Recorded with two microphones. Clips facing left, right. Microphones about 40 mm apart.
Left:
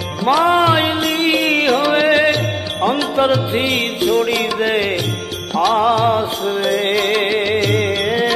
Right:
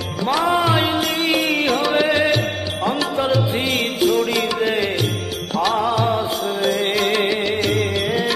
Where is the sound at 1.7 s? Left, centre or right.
Centre.